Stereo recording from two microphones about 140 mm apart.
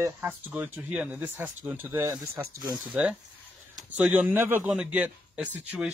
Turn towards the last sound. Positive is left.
turn(degrees=-10)  # may be behind; listen again after turning